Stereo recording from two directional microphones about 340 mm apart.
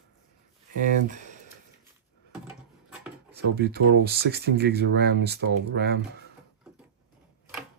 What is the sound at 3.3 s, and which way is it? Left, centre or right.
Speech, right.